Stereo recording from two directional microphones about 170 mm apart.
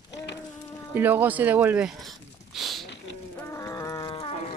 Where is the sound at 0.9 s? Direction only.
10° right (ahead or behind).